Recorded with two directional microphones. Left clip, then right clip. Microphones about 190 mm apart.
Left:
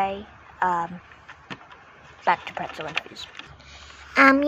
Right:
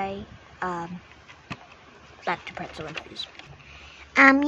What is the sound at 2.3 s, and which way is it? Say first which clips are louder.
Speech: left 7 dB; 15° right (ahead or behind).